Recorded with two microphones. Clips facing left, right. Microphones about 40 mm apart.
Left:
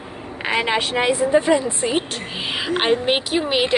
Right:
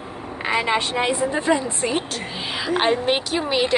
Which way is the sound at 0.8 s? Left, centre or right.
Left.